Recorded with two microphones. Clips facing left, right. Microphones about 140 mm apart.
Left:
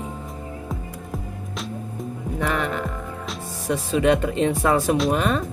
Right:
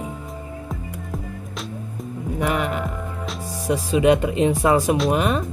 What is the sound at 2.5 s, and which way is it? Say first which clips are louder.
Speech: right 1 dB; 10° right (ahead or behind).